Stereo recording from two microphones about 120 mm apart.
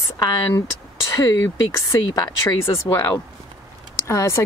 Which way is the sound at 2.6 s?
20° left (ahead or behind).